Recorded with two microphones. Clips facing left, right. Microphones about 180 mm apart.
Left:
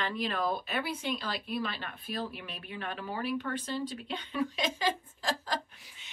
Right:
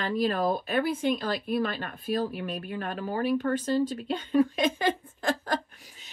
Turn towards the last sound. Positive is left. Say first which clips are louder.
# right 1 dB
turn(degrees=-50)  # may be behind; listen again after turning